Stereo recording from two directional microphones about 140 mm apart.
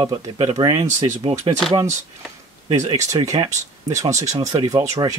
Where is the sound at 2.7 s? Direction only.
60° right (ahead or behind).